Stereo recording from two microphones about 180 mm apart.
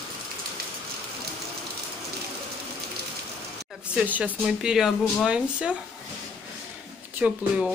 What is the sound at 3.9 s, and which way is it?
Speech, 5° right (ahead or behind).